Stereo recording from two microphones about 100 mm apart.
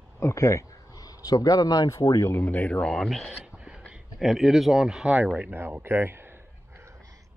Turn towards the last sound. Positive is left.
turn(degrees=-30)  # may be behind; listen again after turning